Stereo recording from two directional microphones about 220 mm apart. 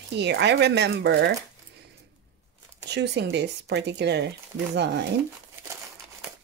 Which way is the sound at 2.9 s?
50° right (ahead or behind).